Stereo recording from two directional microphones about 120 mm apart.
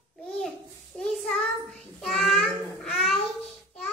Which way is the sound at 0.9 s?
5° left (ahead or behind).